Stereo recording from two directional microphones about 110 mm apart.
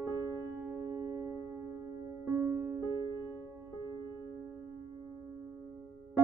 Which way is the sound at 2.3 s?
20° right (ahead or behind).